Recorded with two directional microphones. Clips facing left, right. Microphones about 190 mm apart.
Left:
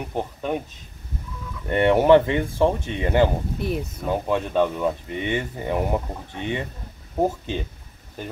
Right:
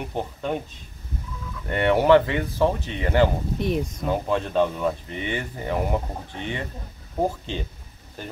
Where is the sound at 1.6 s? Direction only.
25° left (ahead or behind).